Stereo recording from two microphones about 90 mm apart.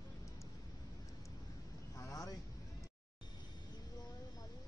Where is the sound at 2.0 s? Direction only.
40° left (ahead or behind).